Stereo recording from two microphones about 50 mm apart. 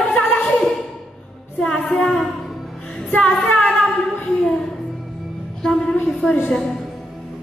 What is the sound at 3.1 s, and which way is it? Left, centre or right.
Speech, left.